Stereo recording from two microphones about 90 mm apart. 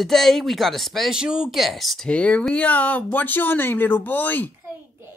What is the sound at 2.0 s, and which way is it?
A woman's voice, 15° left (ahead or behind).